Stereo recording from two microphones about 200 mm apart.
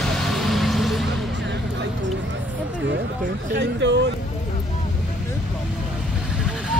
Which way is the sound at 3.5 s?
60° right (ahead or behind).